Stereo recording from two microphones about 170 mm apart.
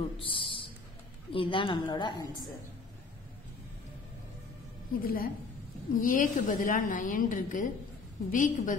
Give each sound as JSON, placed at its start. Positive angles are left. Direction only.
{"t": 0.2, "sound": "a sound", "side_deg": 30}
{"t": 1.3, "sound": "a woman's voice", "side_deg": 30}
{"t": 5.0, "sound": "a woman's voice", "side_deg": 60}